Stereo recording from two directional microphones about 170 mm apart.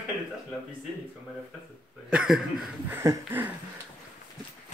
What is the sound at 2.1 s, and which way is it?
Chuckle, 5° right (ahead or behind).